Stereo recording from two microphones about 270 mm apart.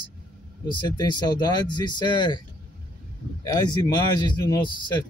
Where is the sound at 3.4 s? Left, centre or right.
Centre.